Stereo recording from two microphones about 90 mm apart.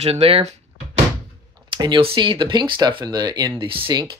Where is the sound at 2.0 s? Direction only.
75° right (ahead or behind).